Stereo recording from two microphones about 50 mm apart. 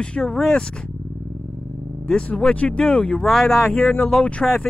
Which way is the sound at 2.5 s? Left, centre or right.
Left.